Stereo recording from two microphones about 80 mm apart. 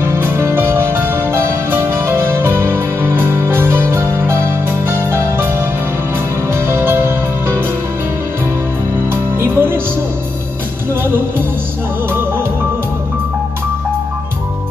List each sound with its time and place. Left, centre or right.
0.0 s music: right
9.1 s music: right